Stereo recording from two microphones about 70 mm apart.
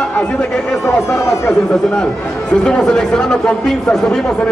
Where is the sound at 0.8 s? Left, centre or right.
Left.